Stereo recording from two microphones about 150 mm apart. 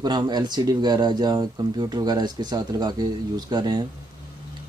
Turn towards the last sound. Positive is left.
turn(degrees=-30)  # may be behind; listen again after turning